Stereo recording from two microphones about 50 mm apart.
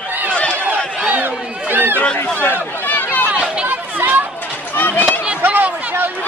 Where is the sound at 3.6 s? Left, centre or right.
Right.